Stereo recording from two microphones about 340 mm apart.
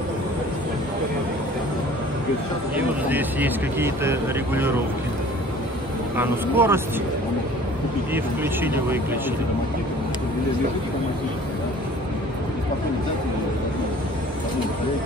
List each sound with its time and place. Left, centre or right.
2.7 s speech: centre
6.1 s speech: centre
8.1 s speech: centre